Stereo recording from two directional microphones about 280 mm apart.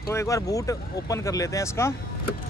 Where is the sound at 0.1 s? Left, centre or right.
Centre.